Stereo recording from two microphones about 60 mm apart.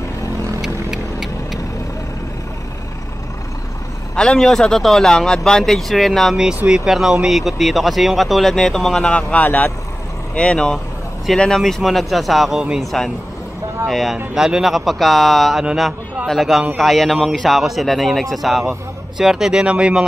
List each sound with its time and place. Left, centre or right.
0.6 s vehicle: centre
4.1 s vehicle: centre
4.4 s speech: centre
6.7 s speech: centre
9.1 s speech: left; by 14.1 s centre
14.1 s speech: centre